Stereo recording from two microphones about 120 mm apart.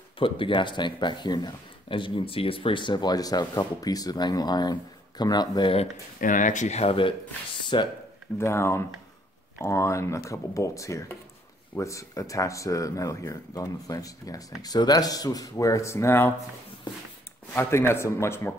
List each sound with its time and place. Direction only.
0.2 s speech: 45° left (ahead or behind)
6.2 s speech: 90° left; by 7.9 s 40° left (ahead or behind)
8.4 s speech: 20° left (ahead or behind)
17.6 s speech: 20° left (ahead or behind)